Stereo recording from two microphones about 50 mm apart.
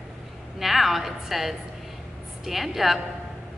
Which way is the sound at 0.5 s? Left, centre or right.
Centre.